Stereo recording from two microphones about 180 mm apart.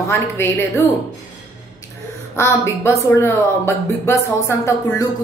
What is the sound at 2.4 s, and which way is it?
A woman's voice, 15° left (ahead or behind).